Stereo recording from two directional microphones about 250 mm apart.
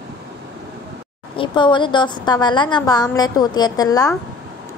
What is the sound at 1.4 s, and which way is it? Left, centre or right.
A woman's voice, centre.